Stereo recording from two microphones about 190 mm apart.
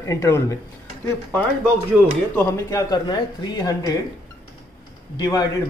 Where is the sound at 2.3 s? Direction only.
15° left (ahead or behind).